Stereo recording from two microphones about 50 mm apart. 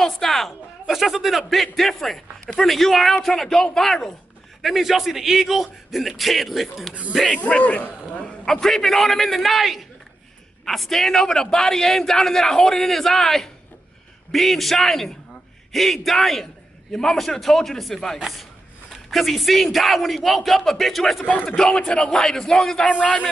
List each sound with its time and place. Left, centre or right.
0.0 s a man's voice: centre
6.9 s speech: right
7.2 s a man's voice: left
8.5 s a man's voice: centre
21.2 s speech: left
21.5 s a man's voice: centre